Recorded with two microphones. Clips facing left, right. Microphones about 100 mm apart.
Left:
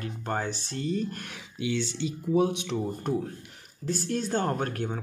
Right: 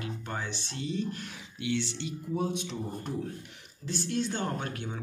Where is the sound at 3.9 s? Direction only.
45° left (ahead or behind).